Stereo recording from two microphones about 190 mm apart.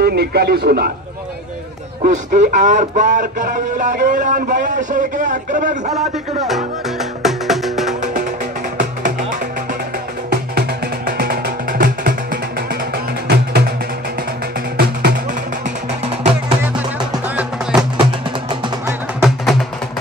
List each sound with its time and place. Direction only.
0.0 s speech: 60° right (ahead or behind)
2.0 s speech: 40° right (ahead or behind)
5.9 s music: centre (ahead or behind)
11.1 s music: 50° right (ahead or behind)
14.8 s music: 55° right (ahead or behind)
17.4 s music: 5° right (ahead or behind)
18.5 s music: 15° right (ahead or behind)